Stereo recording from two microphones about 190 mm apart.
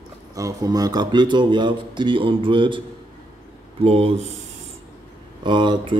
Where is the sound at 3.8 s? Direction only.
30° right (ahead or behind).